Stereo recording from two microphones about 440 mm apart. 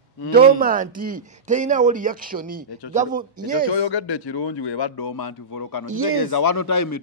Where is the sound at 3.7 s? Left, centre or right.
Left.